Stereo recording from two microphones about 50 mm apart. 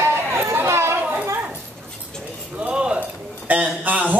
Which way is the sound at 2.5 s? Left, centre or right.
Right.